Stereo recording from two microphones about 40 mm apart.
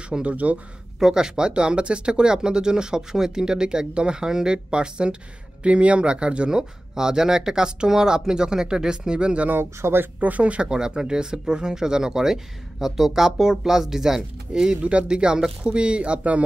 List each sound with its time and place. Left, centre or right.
0.2 s speech: right
0.9 s speech: centre
9.5 s speech: right
10.2 s speech: right
10.7 s speech: centre
14.8 s speech: right